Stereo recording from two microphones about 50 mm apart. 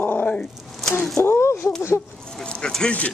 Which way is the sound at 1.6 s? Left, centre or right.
Left.